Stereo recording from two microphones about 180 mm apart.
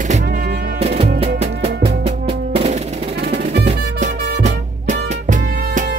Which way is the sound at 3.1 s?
65° right (ahead or behind).